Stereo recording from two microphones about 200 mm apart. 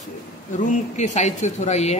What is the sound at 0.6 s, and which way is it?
Speech, 35° left (ahead or behind).